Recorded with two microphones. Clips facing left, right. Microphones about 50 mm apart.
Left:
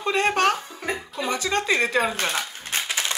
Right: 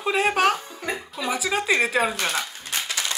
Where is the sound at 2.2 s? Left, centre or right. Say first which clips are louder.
Even; centre.